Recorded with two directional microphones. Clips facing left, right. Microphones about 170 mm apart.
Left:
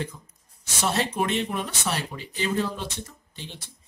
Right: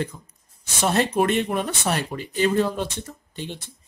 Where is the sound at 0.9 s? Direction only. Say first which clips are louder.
Right 6 dB; 55° right (ahead or behind).